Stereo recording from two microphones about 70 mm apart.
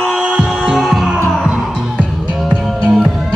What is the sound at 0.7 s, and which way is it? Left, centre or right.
Music, centre.